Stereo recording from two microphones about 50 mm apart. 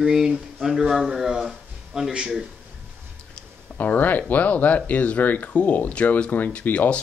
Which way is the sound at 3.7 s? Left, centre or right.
Left.